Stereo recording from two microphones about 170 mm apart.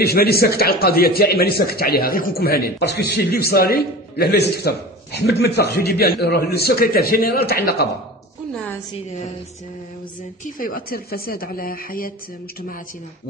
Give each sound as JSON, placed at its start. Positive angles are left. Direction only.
{"t": 0.0, "sound": "speech", "side_deg": 65}
{"t": 10.4, "sound": "speech", "side_deg": 55}